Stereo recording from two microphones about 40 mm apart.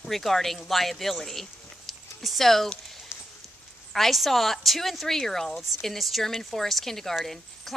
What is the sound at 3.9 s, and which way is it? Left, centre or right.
A woman's voice, centre.